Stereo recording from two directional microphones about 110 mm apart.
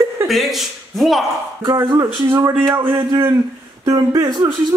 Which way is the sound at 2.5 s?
20° right (ahead or behind).